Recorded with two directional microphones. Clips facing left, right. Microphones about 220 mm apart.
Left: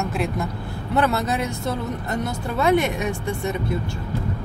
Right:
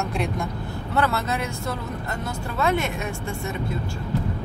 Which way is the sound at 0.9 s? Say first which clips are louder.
Left 3 dB; 20° left (ahead or behind).